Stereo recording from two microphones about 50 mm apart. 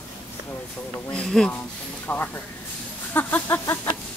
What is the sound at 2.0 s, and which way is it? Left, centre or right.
Speech, left.